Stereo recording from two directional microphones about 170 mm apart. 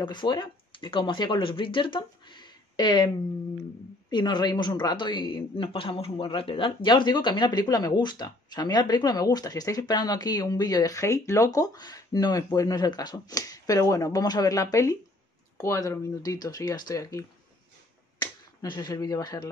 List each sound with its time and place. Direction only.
0.0 s speech: 25° left (ahead or behind)
4.1 s a woman's voice: 25° left (ahead or behind)
18.7 s a woman's voice: 25° left (ahead or behind)